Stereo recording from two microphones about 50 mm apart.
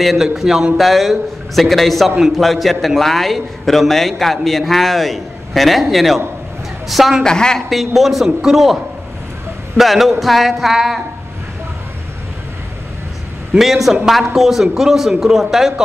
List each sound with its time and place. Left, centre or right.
0.0 s a man's voice: centre
7.2 s a woman's voice: centre
7.7 s a man's voice: centre
9.8 s a man's voice: centre
13.6 s a man's voice: centre